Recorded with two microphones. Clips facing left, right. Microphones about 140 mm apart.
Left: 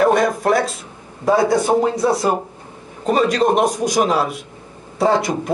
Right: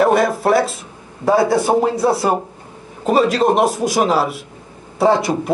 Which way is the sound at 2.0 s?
30° right (ahead or behind).